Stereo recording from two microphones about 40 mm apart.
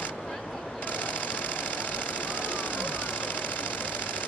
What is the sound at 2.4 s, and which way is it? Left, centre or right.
Vehicle, left.